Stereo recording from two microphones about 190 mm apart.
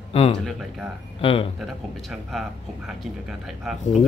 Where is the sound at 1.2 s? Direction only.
30° left (ahead or behind).